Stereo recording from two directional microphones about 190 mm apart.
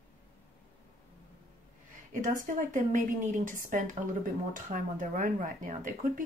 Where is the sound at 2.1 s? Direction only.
45° right (ahead or behind).